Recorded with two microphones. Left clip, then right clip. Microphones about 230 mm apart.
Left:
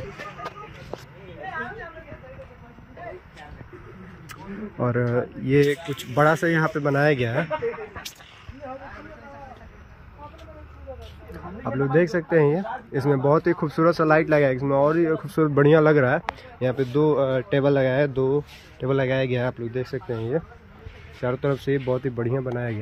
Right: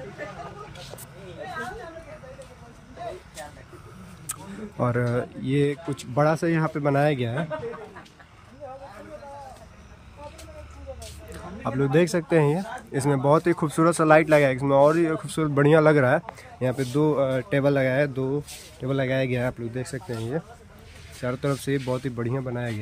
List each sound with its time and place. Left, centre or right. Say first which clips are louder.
4.7 s speech: left 1 dB; centre
5.5 s speech: left 5 dB; centre
11.6 s speech: left 1 dB; right